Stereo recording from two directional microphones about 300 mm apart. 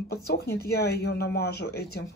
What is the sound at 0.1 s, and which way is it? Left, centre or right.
Speech, left.